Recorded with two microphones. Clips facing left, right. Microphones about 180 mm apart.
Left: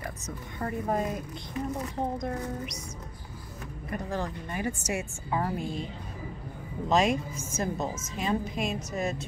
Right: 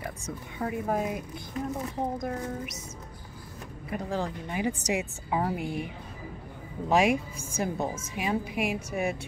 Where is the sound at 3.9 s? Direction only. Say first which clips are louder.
Right 2 dB; 10° right (ahead or behind).